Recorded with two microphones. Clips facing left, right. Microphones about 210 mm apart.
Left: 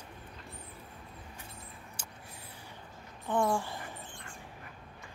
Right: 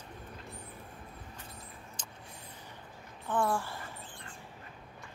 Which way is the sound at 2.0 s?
10° left (ahead or behind).